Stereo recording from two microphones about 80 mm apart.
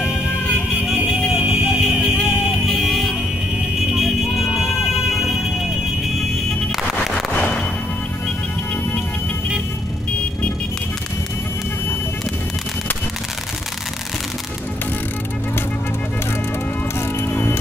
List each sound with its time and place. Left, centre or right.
0.9 s music: centre
1.9 s vehicle: centre
3.9 s music: centre
6.7 s music: centre
7.3 s music: left
17.2 s music: left